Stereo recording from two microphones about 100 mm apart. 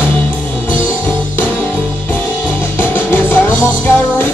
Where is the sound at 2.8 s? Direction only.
20° left (ahead or behind).